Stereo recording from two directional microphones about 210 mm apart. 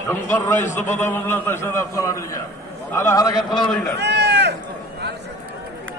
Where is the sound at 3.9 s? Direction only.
55° right (ahead or behind).